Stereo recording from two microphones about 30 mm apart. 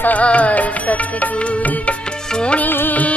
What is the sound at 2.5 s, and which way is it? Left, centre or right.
Music, left.